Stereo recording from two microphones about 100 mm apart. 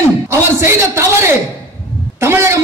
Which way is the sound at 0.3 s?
25° right (ahead or behind).